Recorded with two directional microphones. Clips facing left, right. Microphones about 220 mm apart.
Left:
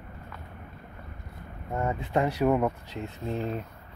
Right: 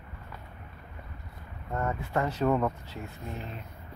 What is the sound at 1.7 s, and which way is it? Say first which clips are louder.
Speech: left 3 dB; 15° left (ahead or behind).